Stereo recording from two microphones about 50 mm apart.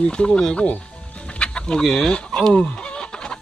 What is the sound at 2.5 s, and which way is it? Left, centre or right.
Chicken, left.